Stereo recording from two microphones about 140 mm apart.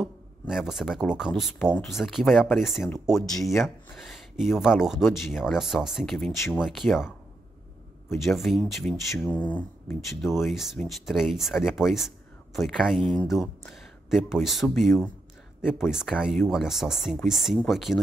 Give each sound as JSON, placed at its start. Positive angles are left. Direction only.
{"t": 0.0, "sound": "speech", "side_deg": -5}
{"t": 8.3, "sound": "speech", "side_deg": 0}
{"t": 9.2, "sound": "speech", "side_deg": 10}
{"t": 10.4, "sound": "speech", "side_deg": 0}